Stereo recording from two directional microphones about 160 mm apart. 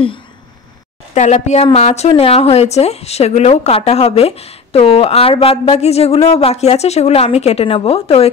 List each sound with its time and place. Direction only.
1.1 s a woman's voice: 45° left (ahead or behind)